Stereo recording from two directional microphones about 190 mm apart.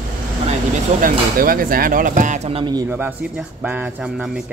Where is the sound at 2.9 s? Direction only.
10° right (ahead or behind).